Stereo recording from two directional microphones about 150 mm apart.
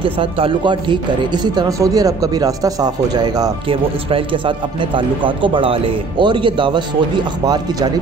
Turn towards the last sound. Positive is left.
turn(degrees=-25)  # may be behind; listen again after turning